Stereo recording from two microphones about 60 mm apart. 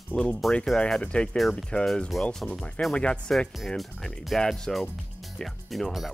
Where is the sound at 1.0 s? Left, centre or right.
Centre.